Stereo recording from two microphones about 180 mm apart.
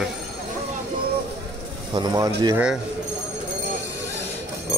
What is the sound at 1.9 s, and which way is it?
Speech, 25° right (ahead or behind).